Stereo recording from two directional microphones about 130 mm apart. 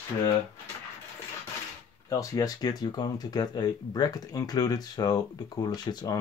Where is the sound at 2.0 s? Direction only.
25° left (ahead or behind).